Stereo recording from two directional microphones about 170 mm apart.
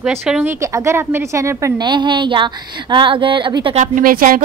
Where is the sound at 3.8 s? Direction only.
55° right (ahead or behind).